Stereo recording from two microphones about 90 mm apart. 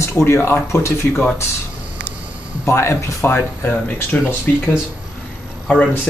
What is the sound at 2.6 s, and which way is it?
Speech, 25° left (ahead or behind).